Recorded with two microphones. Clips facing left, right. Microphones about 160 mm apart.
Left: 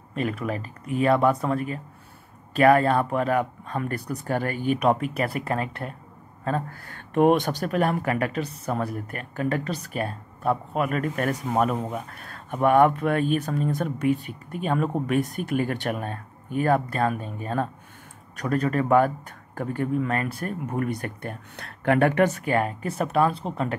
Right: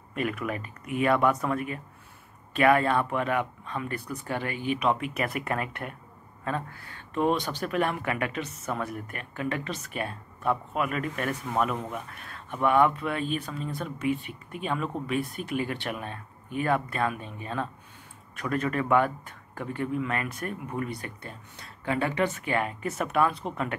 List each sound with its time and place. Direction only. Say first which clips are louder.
0.1 s speech: left 3 dB; 30° left (ahead or behind)
7.2 s speech: left 7 dB; 55° left (ahead or behind)
22.3 s speech: left 5 dB; 40° left (ahead or behind)